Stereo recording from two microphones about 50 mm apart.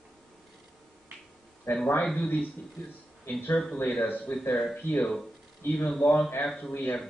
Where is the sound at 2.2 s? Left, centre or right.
Left.